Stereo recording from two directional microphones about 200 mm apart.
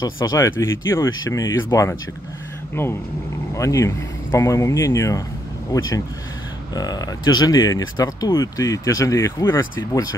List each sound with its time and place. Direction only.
0.0 s speech: 15° left (ahead or behind)